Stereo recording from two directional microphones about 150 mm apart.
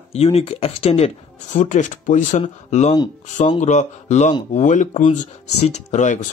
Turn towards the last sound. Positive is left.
turn(degrees=55)  # may be behind; listen again after turning